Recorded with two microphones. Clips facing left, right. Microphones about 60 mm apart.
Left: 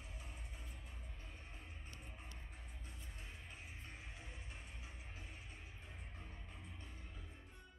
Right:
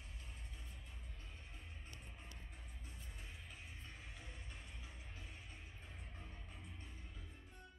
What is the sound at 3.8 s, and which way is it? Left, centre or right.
Music, centre.